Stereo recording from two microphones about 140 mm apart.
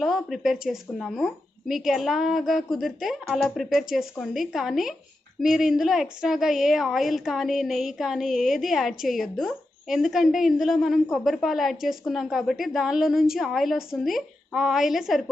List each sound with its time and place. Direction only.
0.0 s a woman's voice: centre (ahead or behind)